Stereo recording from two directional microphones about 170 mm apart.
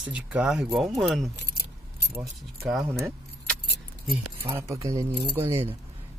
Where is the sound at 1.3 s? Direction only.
75° left (ahead or behind).